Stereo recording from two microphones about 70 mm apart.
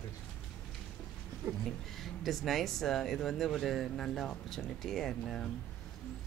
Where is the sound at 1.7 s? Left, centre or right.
Centre.